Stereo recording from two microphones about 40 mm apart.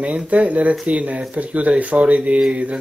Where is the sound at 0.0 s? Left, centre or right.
Right.